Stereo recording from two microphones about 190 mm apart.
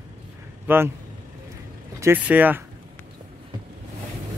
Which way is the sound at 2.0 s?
10° right (ahead or behind).